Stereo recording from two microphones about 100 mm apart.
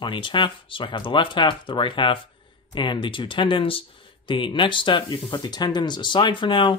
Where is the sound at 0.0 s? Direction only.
55° left (ahead or behind).